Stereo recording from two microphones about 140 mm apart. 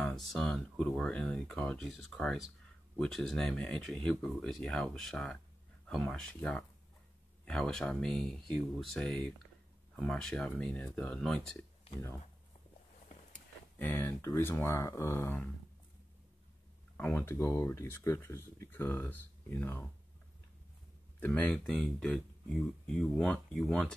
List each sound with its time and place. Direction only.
0.0 s speech: 5° left (ahead or behind)
13.3 s speech: 15° left (ahead or behind)
16.9 s speech: 10° left (ahead or behind)
21.2 s speech: 10° left (ahead or behind)